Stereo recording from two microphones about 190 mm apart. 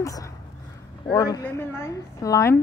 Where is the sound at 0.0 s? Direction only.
15° left (ahead or behind).